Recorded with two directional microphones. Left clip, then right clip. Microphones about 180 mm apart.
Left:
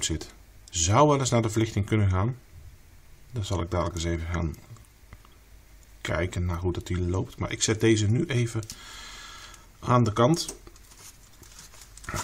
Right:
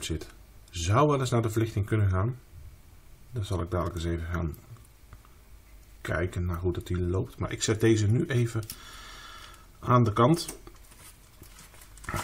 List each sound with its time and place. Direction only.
0.7 s speech: 35° left (ahead or behind)
3.3 s speech: 20° left (ahead or behind)
6.0 s speech: 20° left (ahead or behind); by 10.7 s centre (ahead or behind)